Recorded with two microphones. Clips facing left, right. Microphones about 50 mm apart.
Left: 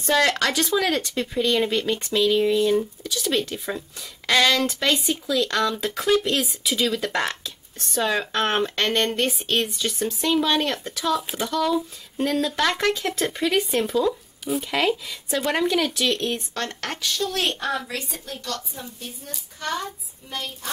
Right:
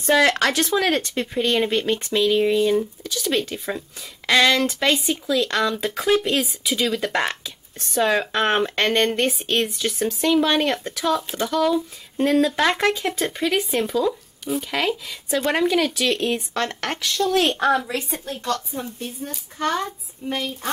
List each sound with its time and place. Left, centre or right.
0.0 s speech: centre
0.5 s speech: centre
17.2 s a woman's voice: right